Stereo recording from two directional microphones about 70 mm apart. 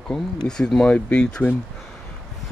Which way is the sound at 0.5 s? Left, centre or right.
Centre.